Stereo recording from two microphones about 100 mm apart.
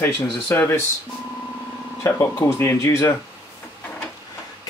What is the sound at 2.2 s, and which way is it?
Speech, 30° left (ahead or behind).